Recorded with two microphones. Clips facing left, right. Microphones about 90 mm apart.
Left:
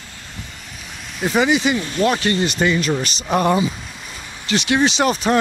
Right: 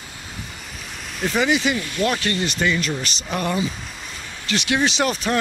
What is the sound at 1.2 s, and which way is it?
Speech, 15° left (ahead or behind).